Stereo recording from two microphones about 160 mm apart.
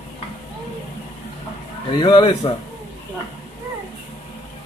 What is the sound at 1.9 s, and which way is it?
Speech, 30° left (ahead or behind).